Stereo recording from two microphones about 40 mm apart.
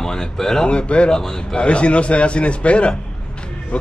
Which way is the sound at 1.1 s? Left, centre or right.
Centre.